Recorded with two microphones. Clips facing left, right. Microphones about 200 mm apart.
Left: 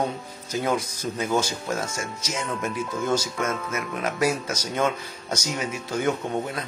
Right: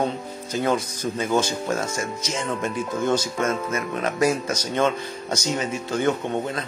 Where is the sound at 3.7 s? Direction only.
10° left (ahead or behind).